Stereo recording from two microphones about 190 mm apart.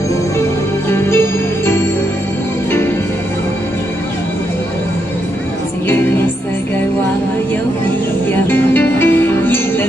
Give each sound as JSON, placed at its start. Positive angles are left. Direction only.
{"t": 0.8, "sound": "music", "side_deg": 15}
{"t": 5.9, "sound": "music", "side_deg": 10}
{"t": 8.3, "sound": "music", "side_deg": 10}